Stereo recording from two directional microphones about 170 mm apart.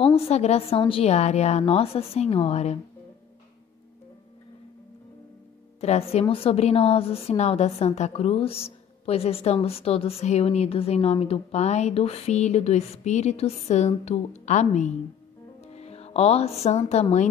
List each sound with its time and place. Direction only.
0.0 s a woman's voice: 35° left (ahead or behind)
5.8 s a woman's voice: 40° left (ahead or behind)